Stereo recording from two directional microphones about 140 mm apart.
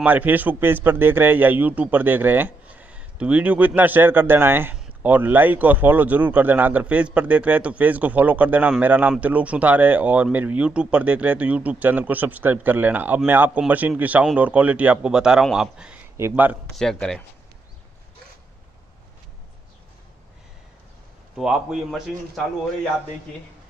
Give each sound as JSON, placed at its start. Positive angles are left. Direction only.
{"t": 0.0, "sound": "a man's voice", "side_deg": -10}
{"t": 16.2, "sound": "a man's voice", "side_deg": -15}
{"t": 16.7, "sound": "a man's voice", "side_deg": 5}
{"t": 21.4, "sound": "a man's voice", "side_deg": -5}